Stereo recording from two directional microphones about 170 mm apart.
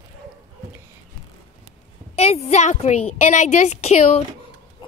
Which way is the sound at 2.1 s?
40° left (ahead or behind).